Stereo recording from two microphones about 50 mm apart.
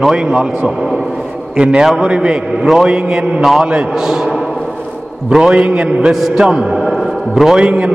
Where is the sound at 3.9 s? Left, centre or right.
Centre.